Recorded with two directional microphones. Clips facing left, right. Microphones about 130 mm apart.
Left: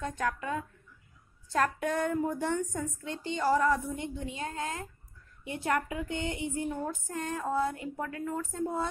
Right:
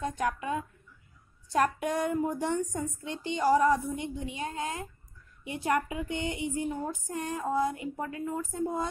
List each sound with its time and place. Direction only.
0.0 s a woman's voice: 15° right (ahead or behind)